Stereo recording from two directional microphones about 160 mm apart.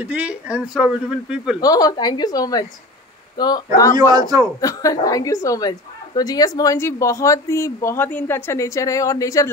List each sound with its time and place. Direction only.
0.0 s speech: 10° right (ahead or behind)
1.6 s a woman's voice: 25° left (ahead or behind)
4.1 s a man's voice: 25° right (ahead or behind)
4.6 s a woman's voice: 20° left (ahead or behind)